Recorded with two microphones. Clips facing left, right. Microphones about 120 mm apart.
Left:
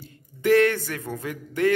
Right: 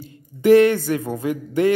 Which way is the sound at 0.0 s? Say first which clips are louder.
Right 6 dB; 15° right (ahead or behind).